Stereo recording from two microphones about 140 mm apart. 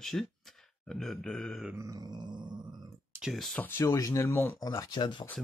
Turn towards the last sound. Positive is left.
turn(degrees=30)  # may be behind; listen again after turning